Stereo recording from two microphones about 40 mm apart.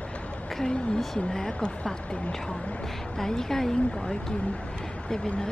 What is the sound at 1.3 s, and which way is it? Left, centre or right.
Speech, centre.